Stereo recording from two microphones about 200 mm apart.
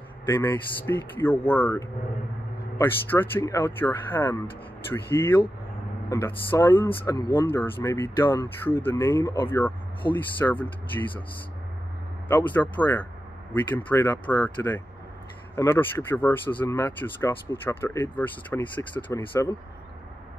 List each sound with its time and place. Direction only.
0.3 s speech: 10° left (ahead or behind)
10.0 s speech: 20° left (ahead or behind)
10.4 s speech: 10° left (ahead or behind)
12.3 s speech: 10° left (ahead or behind)